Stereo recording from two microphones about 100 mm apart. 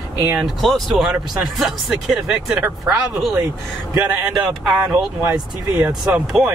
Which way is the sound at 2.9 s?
25° right (ahead or behind).